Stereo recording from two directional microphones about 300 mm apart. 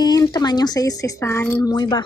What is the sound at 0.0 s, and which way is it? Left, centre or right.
A woman's voice, centre.